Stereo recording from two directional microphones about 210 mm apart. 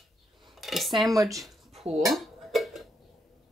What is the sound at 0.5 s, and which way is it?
Dishes, centre (ahead or behind).